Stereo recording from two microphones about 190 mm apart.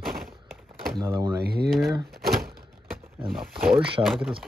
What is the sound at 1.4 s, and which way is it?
Speech, 55° right (ahead or behind).